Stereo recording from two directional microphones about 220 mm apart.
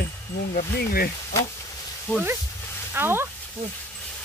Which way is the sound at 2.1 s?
5° left (ahead or behind).